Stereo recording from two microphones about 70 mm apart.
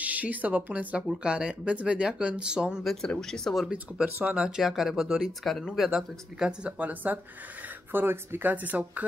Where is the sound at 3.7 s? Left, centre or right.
Centre.